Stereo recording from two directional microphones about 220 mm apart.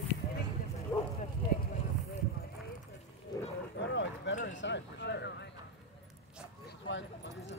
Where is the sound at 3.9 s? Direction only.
55° left (ahead or behind).